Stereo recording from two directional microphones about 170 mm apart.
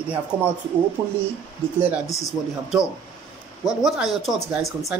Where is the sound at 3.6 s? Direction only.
Centre (ahead or behind).